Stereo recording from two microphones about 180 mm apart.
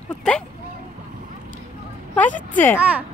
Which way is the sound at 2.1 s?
10° left (ahead or behind).